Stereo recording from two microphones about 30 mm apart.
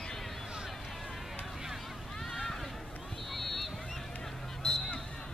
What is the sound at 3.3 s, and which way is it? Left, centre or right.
Boat, centre.